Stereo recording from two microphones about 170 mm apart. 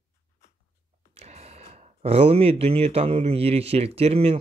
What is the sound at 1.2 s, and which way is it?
Speech, 40° right (ahead or behind).